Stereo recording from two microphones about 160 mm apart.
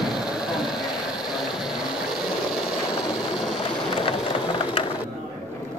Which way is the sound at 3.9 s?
35° left (ahead or behind).